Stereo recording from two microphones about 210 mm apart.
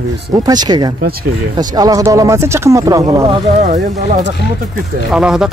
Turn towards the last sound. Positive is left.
turn(degrees=-5)  # may be behind; listen again after turning